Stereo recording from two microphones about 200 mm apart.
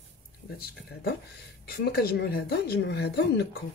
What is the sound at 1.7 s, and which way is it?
Speech, 50° left (ahead or behind).